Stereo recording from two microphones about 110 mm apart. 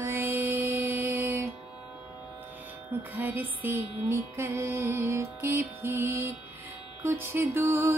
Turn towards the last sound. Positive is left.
turn(degrees=-25)  # may be behind; listen again after turning